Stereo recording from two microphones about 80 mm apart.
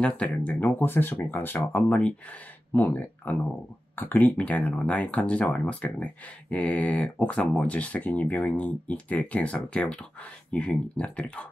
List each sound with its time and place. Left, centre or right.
0.0 s speech: centre